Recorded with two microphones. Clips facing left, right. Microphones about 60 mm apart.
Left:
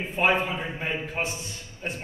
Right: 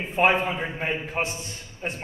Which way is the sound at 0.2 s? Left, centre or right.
Right.